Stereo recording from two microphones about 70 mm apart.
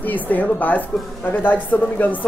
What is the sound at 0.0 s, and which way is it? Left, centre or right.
Speech, left.